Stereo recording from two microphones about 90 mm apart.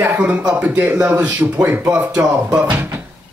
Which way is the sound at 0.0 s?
15° right (ahead or behind).